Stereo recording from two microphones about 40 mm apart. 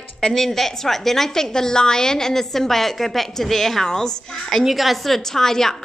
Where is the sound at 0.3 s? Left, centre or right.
Centre.